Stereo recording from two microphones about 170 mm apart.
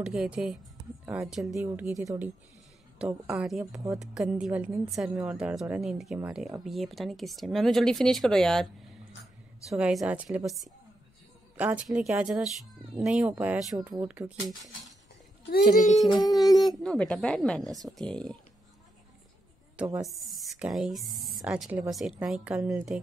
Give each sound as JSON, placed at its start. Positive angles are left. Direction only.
{"t": 0.0, "sound": "speech", "side_deg": -5}
{"t": 1.5, "sound": "a woman's voice", "side_deg": -15}
{"t": 15.7, "sound": "child singing", "side_deg": 50}
{"t": 16.1, "sound": "a sound", "side_deg": 20}
{"t": 16.6, "sound": "speech", "side_deg": 0}
{"t": 20.1, "sound": "a woman's voice", "side_deg": 0}